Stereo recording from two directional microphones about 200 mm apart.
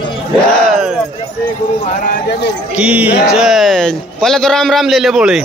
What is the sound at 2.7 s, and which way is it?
A man's voice, 5° right (ahead or behind).